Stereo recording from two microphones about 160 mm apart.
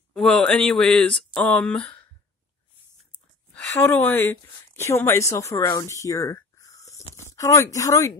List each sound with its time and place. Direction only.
0.1 s speech: 5° left (ahead or behind)
3.8 s speech: 10° left (ahead or behind)